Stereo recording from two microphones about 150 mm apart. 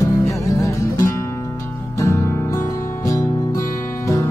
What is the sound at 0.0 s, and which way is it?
Music, 20° left (ahead or behind).